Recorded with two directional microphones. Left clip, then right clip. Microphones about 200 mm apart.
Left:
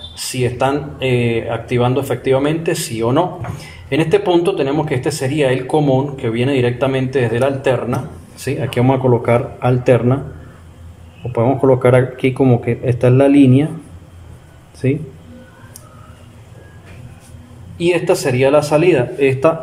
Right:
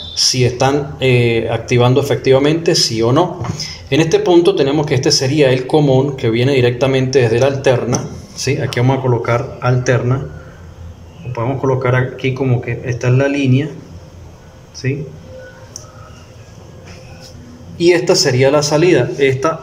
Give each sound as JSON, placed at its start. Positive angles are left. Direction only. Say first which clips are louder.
{"t": 0.2, "sound": "speech", "louder": "right 4 dB", "side_deg": 0}
{"t": 11.3, "sound": "speech", "louder": "left 4 dB", "side_deg": 20}
{"t": 14.8, "sound": "speech", "louder": "left 4 dB", "side_deg": 20}
{"t": 17.7, "sound": "speech", "louder": "right 4 dB", "side_deg": 0}